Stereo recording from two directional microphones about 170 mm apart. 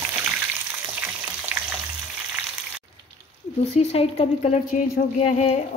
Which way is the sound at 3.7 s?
40° left (ahead or behind).